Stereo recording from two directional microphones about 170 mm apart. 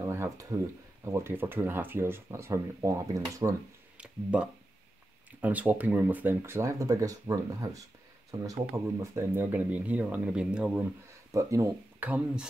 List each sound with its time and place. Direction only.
0.0 s speech: 15° right (ahead or behind)
4.0 s speech: 5° right (ahead or behind)
11.3 s speech: 15° right (ahead or behind)